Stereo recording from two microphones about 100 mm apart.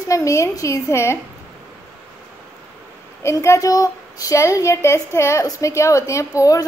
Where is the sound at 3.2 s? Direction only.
30° left (ahead or behind).